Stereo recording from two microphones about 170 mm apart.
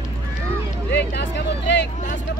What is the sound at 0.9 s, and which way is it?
Speech, 80° left.